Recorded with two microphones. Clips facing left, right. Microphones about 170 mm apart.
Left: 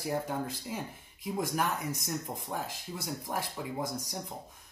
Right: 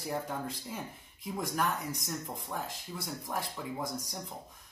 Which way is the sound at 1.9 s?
25° left (ahead or behind).